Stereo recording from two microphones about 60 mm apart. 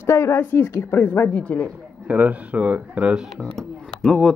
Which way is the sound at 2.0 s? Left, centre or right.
Right.